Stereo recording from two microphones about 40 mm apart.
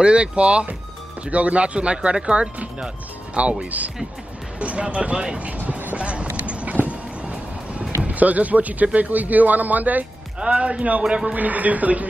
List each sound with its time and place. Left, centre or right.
0.0 s speech: right
4.6 s speech: right
5.9 s music: right
8.0 s speech: right
10.4 s speech: right
11.3 s speech: right